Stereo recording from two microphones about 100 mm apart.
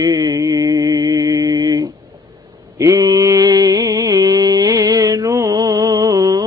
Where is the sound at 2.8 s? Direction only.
35° right (ahead or behind).